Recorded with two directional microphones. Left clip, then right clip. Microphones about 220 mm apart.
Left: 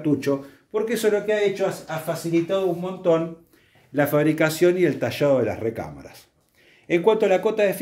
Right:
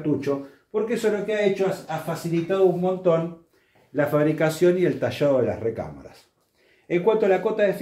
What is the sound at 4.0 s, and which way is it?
Speech, 45° left (ahead or behind).